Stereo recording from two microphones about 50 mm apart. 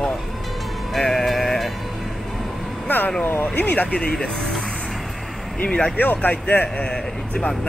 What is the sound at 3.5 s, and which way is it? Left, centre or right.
Speech, left.